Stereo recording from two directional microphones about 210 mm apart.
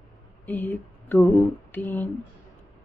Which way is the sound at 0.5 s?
10° left (ahead or behind).